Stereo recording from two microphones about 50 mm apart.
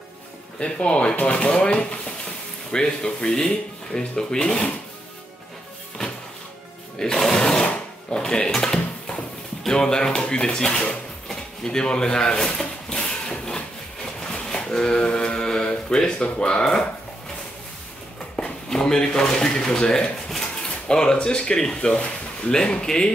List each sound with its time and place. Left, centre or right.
0.6 s speech: left
7.0 s music: centre
7.6 s sewing machine: left
8.2 s dishes: centre
8.5 s a sound: centre
9.7 s speech: centre
11.2 s drawer open or close: centre
14.2 s a sound: centre
18.3 s speech: centre